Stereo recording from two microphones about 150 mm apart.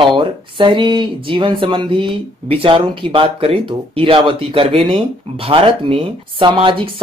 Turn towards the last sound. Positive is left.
turn(degrees=-35)  # may be behind; listen again after turning